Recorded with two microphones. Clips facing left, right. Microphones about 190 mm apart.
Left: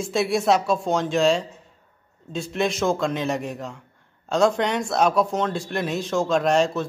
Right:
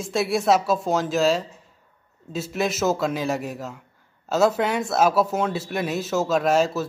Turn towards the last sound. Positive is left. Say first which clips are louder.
# even
turn(degrees=-5)  # may be behind; listen again after turning